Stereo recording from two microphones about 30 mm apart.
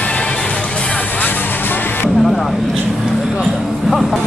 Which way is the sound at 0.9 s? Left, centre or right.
Left.